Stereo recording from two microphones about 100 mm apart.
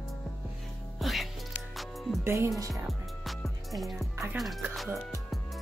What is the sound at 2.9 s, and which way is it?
Music, centre (ahead or behind).